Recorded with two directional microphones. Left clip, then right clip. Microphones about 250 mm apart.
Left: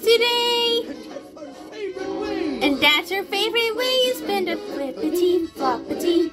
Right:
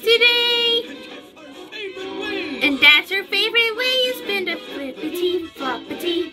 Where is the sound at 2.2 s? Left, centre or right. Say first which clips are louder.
Right 1 dB; right.